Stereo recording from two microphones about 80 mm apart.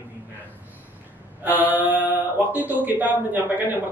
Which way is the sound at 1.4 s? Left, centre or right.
Right.